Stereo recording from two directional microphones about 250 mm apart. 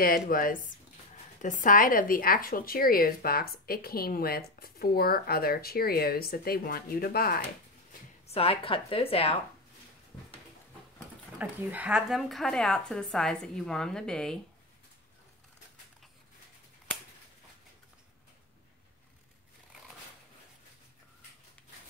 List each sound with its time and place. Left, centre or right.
0.0 s speech: left
8.3 s a woman's voice: left
11.3 s speech: centre